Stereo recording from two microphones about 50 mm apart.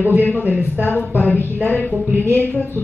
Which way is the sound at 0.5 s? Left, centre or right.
Right.